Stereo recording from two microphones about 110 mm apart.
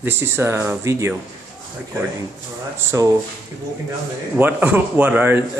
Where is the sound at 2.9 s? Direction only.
30° right (ahead or behind).